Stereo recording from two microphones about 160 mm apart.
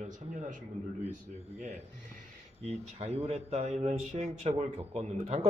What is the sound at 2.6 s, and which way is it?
Speech, 40° right (ahead or behind).